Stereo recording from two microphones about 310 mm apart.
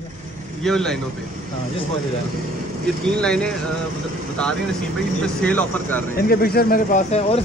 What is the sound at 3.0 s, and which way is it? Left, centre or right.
Speech, centre.